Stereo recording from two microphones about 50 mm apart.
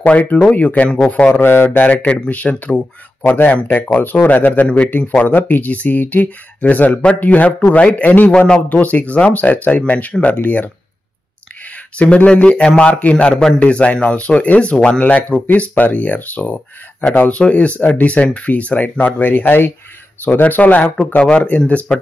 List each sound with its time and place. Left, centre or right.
0.0 s speech: left
1.3 s speech: left
1.9 s speech: left
3.3 s speech: left
12.0 s speech: left